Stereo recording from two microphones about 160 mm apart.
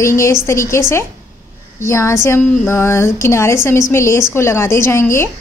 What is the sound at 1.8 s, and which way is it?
A woman's voice, 15° left (ahead or behind).